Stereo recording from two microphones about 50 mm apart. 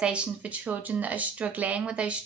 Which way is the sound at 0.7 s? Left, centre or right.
Right.